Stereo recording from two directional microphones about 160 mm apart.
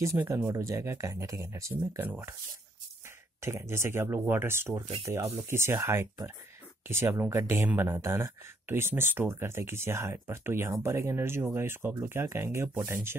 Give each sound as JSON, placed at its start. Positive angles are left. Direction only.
{"t": 0.0, "sound": "speech", "side_deg": -15}
{"t": 3.3, "sound": "speech", "side_deg": -15}